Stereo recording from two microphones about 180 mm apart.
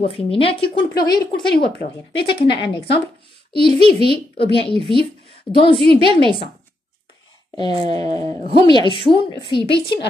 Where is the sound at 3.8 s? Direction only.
35° right (ahead or behind).